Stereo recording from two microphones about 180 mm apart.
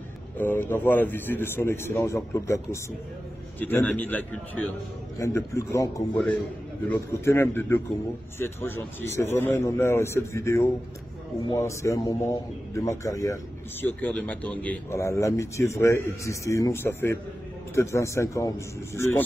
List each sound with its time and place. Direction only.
0.4 s a man's voice: 10° left (ahead or behind)